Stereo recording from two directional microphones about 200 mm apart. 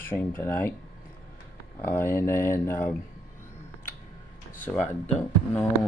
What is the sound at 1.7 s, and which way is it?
Speech, 10° left (ahead or behind).